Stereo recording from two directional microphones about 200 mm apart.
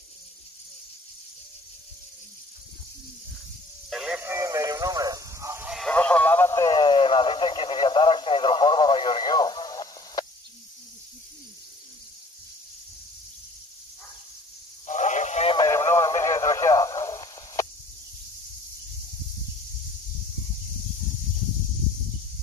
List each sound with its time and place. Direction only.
3.9 s a sound: 5° right (ahead or behind)
5.7 s radio: 5° left (ahead or behind); by 10.2 s 20° left (ahead or behind)
14.9 s radio: 35° left (ahead or behind)
15.6 s radio: 15° left (ahead or behind)